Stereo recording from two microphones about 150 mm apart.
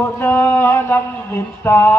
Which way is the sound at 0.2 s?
15° left (ahead or behind).